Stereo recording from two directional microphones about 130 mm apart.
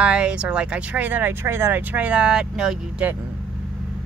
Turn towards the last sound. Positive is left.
turn(degrees=-5)  # may be behind; listen again after turning